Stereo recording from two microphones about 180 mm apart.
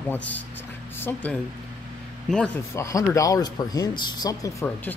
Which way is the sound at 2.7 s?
15° left (ahead or behind).